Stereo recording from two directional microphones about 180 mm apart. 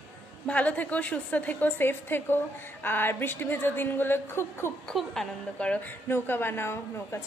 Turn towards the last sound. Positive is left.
turn(degrees=15)  # may be behind; listen again after turning